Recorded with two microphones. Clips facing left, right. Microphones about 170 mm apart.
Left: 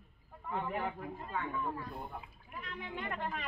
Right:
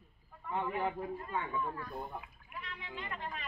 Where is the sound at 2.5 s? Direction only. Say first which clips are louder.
Left 3 dB; 45° left (ahead or behind).